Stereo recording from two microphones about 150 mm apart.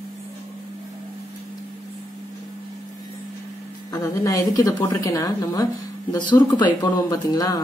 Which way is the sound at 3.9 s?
20° left (ahead or behind).